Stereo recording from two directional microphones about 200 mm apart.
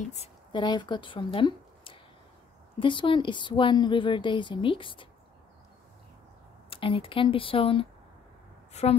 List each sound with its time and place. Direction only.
0.1 s speech: 30° left (ahead or behind)
6.7 s a woman's voice: 25° left (ahead or behind)